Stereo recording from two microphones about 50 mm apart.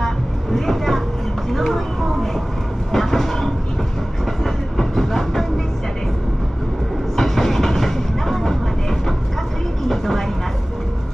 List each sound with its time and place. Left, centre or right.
0.0 s vehicle: centre
1.5 s speech: centre
2.9 s train: centre
4.7 s train: centre
7.2 s train: centre
9.8 s vehicle: centre